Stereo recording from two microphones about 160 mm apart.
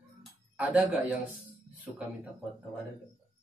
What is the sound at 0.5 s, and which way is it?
Speech, 10° right (ahead or behind).